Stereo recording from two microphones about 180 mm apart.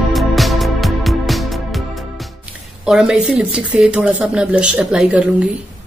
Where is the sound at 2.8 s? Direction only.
5° right (ahead or behind).